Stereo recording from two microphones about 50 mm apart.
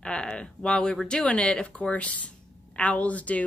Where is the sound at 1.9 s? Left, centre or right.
Left.